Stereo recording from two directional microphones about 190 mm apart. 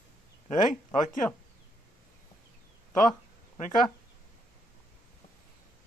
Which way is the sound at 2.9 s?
Centre (ahead or behind).